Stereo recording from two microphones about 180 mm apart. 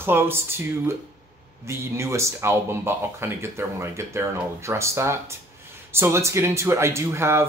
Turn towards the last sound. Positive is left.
turn(degrees=-15)  # may be behind; listen again after turning